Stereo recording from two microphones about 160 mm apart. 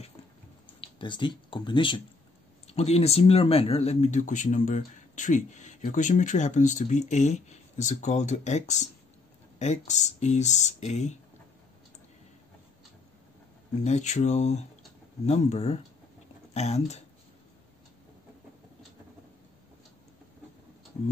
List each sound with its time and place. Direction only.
0.7 s speech: 30° left (ahead or behind)
2.6 s speech: 40° left (ahead or behind)
13.8 s speech: 45° left (ahead or behind)